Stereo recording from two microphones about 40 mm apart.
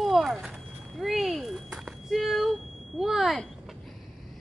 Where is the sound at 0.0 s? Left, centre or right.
Centre.